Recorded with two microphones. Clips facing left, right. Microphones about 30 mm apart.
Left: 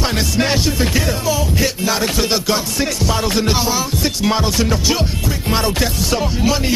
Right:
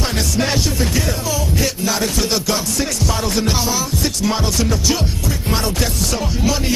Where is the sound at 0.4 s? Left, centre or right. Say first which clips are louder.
Left 2 dB; centre.